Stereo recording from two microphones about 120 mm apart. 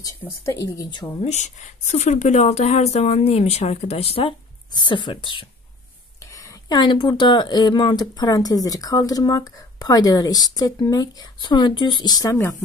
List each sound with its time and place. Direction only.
0.2 s speech: 25° left (ahead or behind)
1.2 s speech: 75° left (ahead or behind); by 4.4 s 55° left (ahead or behind)
4.7 s speech: 40° left (ahead or behind)
6.7 s speech: 40° left (ahead or behind)